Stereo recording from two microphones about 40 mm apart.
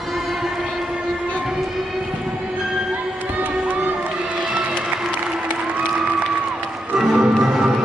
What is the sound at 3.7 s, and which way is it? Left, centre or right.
Crowd, right.